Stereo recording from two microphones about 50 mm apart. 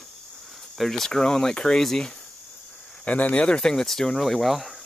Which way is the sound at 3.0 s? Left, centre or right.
Left.